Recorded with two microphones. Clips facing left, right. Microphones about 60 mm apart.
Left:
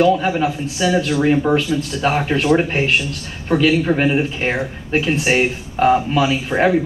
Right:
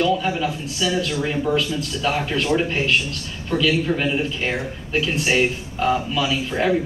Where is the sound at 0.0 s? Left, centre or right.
Left.